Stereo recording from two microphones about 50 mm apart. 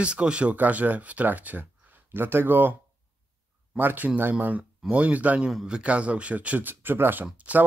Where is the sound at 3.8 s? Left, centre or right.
Right.